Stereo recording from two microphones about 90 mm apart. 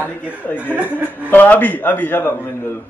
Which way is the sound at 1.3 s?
20° left (ahead or behind).